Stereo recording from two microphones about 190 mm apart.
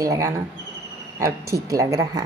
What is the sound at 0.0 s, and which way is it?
A woman's voice, 20° right (ahead or behind).